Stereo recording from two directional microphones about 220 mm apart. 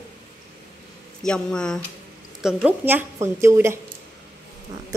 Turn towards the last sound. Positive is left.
turn(degrees=-10)  # may be behind; listen again after turning